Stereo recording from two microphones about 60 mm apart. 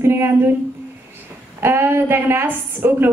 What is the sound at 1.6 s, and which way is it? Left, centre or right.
A woman's voice, right.